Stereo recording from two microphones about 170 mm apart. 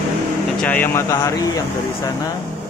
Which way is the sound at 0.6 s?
10° left (ahead or behind).